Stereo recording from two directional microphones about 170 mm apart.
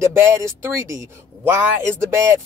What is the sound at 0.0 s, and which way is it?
Speech, 15° right (ahead or behind).